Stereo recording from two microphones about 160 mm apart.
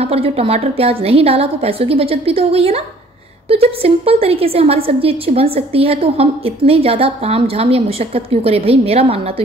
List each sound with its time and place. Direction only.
0.0 s a woman's voice: 35° right (ahead or behind)